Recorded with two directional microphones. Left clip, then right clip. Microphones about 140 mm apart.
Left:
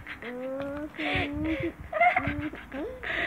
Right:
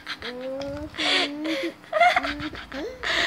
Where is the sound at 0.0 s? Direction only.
65° right (ahead or behind).